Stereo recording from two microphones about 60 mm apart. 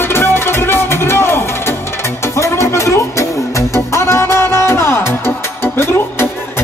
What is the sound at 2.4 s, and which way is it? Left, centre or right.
Music, left.